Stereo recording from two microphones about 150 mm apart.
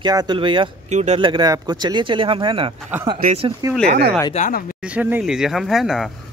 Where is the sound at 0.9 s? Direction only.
50° right (ahead or behind).